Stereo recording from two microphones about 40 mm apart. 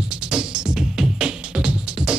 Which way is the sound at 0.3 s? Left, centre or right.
Centre.